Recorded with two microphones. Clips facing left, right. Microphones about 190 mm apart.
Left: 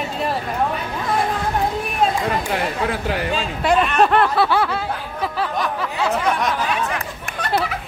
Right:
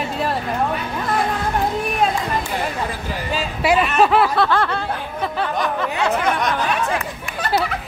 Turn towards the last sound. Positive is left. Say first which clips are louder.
# right 1 dB
turn(degrees=0)  # may be behind; listen again after turning